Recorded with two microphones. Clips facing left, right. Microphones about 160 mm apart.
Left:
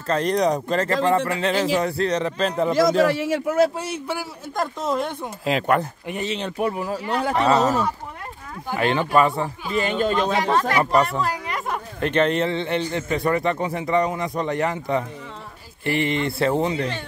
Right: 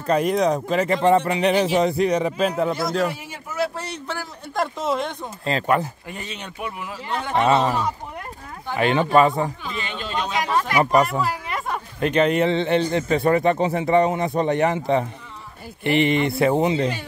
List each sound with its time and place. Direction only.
0.0 s a man's voice: 10° right (ahead or behind)
0.8 s a man's voice: 20° right (ahead or behind)
3.1 s speech: 90° left
3.7 s a man's voice: 10° left (ahead or behind)
6.0 s a man's voice: 20° left (ahead or behind); by 7.8 s 40° left (ahead or behind)
8.7 s a man's voice: 20° right (ahead or behind)
9.8 s a man's voice: 45° left (ahead or behind)
10.7 s a man's voice: 15° right (ahead or behind)
11.1 s a sound: 5° right (ahead or behind)
12.0 s speech: 15° right (ahead or behind)